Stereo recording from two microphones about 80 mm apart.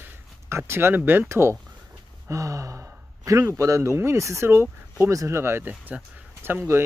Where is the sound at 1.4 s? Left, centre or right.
Right.